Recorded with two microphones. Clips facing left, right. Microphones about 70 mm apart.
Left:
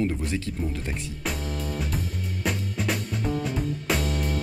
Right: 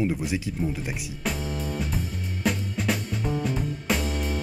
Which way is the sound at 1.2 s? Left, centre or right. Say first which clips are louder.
Right 2 dB; centre.